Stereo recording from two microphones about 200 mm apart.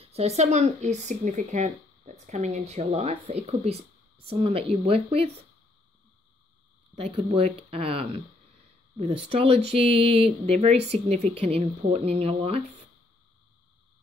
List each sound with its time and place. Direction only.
0.0 s speech: 30° right (ahead or behind)
7.0 s speech: 30° right (ahead or behind)